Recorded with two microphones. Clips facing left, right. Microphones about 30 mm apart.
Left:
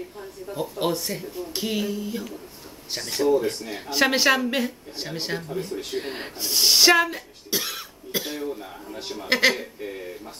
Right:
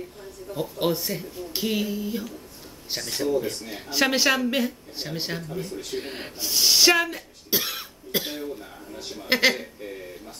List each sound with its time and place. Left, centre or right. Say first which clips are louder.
0.6 s speech: even; centre
5.5 s speech: left 2 dB; centre
8.1 s speech: right 1 dB; centre
8.5 s speech: left 3 dB; left
9.3 s speech: left 1 dB; centre
9.8 s speech: left 3 dB; centre